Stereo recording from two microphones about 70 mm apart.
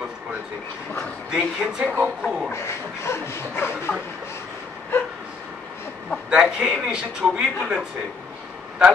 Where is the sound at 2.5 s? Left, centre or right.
Left.